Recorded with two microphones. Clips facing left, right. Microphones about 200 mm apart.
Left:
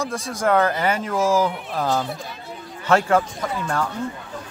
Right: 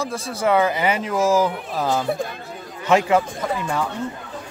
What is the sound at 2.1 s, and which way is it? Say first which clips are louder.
Speech: right 7 dB; 50° right (ahead or behind).